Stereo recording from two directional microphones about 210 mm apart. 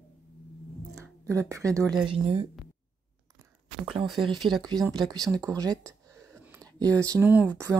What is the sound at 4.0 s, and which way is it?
Speech, centre (ahead or behind).